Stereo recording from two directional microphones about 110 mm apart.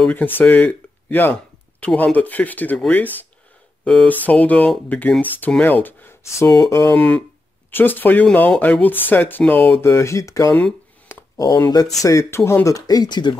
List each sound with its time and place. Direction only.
0.1 s speech: 15° left (ahead or behind)
3.8 s speech: 10° left (ahead or behind); by 7.0 s 30° left (ahead or behind)
7.0 s speech: 15° left (ahead or behind); by 13.4 s 45° left (ahead or behind)